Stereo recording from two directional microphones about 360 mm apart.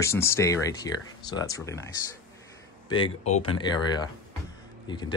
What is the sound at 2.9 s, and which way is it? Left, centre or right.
Speech, centre.